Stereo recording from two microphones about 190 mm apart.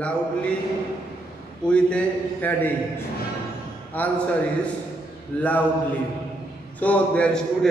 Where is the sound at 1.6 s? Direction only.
5° left (ahead or behind).